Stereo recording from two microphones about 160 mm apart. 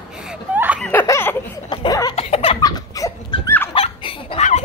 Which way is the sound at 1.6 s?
25° left (ahead or behind).